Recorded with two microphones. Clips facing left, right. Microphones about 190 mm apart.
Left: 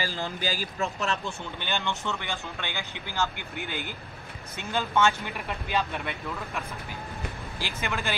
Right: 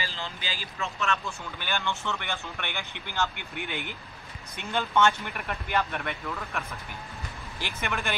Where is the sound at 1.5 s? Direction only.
20° left (ahead or behind).